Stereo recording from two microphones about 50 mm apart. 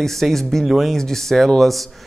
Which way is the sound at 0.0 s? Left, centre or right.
Centre.